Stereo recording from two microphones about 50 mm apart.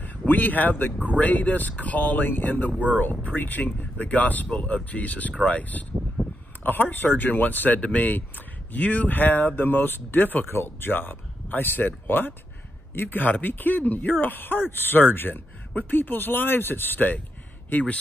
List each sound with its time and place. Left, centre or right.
0.3 s speech: left
2.7 s speech: right
3.3 s speech: left
6.2 s a sound: right
6.6 s speech: left
9.7 s speech: left